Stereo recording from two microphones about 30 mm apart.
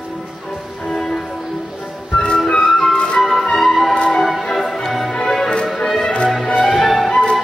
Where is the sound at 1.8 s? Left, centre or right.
Left.